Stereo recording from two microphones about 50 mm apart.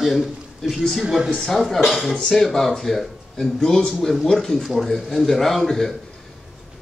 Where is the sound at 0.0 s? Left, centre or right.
Centre.